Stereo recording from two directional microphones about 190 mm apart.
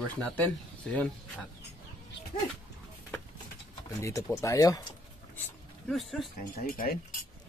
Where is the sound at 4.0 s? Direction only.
15° left (ahead or behind).